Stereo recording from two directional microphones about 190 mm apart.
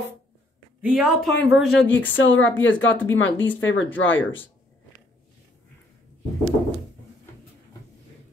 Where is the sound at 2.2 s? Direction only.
90° left.